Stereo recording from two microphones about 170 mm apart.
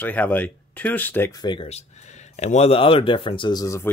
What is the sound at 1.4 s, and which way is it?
Speech, 30° left (ahead or behind).